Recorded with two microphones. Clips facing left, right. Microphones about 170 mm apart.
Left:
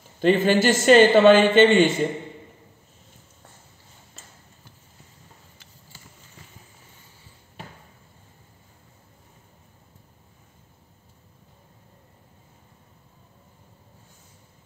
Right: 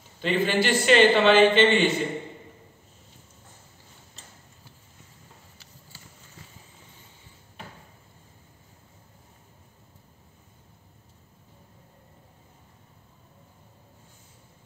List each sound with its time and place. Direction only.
0.2 s a man's voice: 45° left (ahead or behind)